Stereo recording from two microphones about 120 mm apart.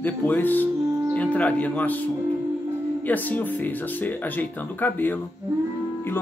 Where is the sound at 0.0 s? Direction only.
15° left (ahead or behind).